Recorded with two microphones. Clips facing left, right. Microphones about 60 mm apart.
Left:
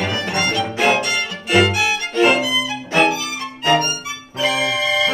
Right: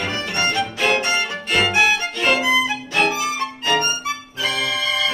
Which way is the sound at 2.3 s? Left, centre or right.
Right.